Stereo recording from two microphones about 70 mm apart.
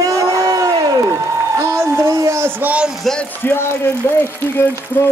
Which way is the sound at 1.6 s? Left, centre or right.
Right.